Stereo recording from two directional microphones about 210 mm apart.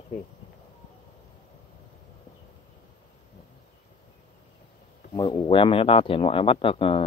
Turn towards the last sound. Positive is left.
turn(degrees=25)  # may be behind; listen again after turning